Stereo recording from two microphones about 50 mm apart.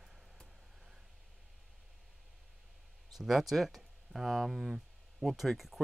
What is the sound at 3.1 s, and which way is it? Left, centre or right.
Speech, centre.